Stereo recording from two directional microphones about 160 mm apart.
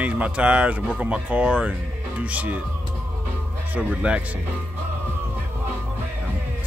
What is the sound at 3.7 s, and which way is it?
Speech, 10° right (ahead or behind).